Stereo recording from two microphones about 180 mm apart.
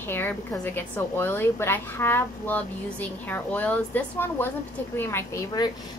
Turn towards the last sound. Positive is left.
turn(degrees=20)  # may be behind; listen again after turning